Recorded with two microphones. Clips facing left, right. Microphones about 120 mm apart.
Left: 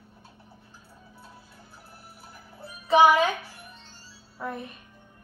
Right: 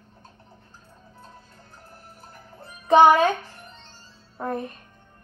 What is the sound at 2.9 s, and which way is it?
Speech, 55° right (ahead or behind).